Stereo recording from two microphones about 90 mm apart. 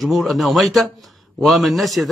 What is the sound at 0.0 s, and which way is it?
Speech, centre (ahead or behind).